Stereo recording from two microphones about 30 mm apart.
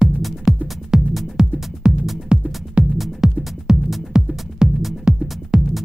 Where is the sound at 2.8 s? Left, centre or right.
Right.